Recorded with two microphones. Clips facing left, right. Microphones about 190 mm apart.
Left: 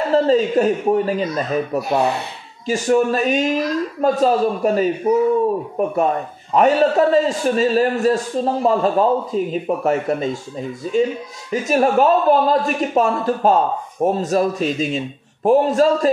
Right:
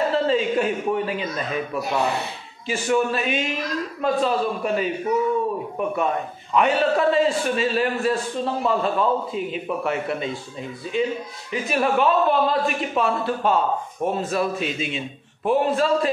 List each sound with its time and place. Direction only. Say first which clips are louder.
0.1 s a man's voice: left 6 dB; 40° left (ahead or behind)